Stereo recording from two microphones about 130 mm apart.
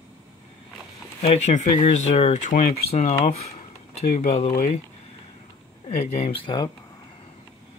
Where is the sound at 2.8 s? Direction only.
55° left (ahead or behind).